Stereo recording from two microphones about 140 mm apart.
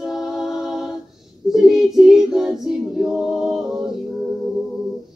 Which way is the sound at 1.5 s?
5° right (ahead or behind).